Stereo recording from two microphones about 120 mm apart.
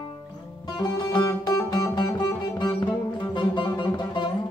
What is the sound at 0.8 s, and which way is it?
Music, 35° left (ahead or behind).